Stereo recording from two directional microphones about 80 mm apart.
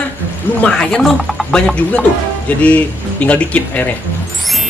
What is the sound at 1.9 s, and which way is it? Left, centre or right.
Speech, centre.